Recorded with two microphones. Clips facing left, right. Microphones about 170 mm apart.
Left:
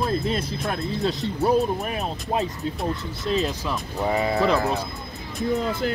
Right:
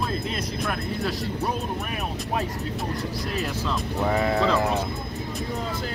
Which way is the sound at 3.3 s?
20° left (ahead or behind).